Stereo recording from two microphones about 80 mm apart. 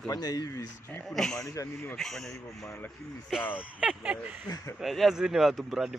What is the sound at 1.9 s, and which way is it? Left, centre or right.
Speech, centre.